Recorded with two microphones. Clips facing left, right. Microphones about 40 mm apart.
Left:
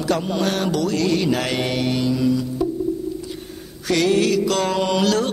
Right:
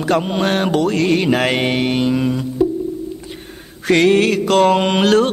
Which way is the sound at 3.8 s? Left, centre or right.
Right.